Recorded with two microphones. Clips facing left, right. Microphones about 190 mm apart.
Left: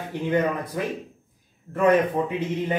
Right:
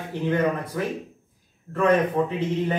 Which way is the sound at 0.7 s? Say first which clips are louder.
Right 1 dB; 15° left (ahead or behind).